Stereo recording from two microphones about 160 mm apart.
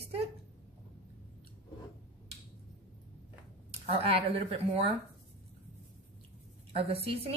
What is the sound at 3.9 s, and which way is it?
A woman's voice, 35° right (ahead or behind).